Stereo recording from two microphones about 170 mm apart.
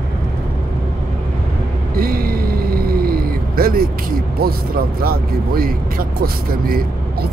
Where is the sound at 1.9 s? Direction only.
60° right (ahead or behind).